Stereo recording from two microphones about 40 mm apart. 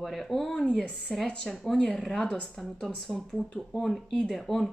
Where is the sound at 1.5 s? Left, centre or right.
Centre.